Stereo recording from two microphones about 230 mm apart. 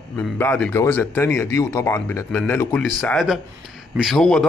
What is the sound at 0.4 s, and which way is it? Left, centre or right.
Speech, centre.